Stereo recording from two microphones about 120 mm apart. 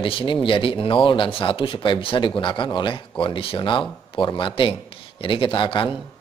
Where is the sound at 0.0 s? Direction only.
45° left (ahead or behind).